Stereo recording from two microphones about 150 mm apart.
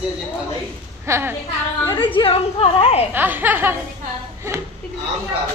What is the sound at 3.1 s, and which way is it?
Speech, 15° right (ahead or behind).